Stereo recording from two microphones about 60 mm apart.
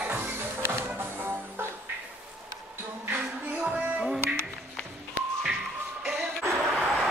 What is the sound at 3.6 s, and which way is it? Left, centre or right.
Music, centre.